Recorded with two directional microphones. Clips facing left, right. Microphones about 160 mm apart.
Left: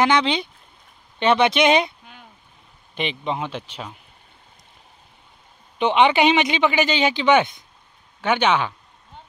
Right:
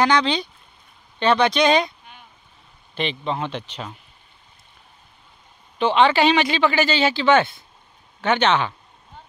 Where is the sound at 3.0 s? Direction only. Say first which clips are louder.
Right 1 dB; 15° left (ahead or behind).